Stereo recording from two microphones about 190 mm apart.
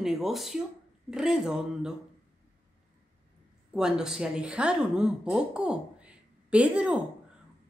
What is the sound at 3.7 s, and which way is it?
Speech, 5° right (ahead or behind).